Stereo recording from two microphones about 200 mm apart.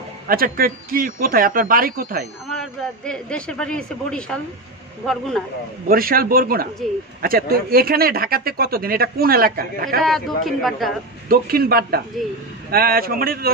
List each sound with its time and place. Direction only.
0.3 s speech: 45° right (ahead or behind)
3.1 s a man's voice: 5° left (ahead or behind)
5.9 s speech: 45° right (ahead or behind)
10.0 s a man's voice: centre (ahead or behind)
11.2 s speech: 50° right (ahead or behind)